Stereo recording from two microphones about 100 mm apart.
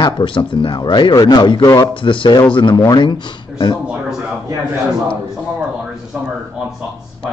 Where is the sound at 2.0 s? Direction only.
55° left (ahead or behind).